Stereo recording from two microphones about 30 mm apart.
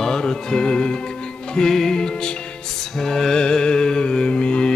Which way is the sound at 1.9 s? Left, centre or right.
Left.